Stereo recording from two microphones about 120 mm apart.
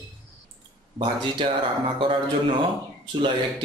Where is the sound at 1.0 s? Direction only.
50° right (ahead or behind).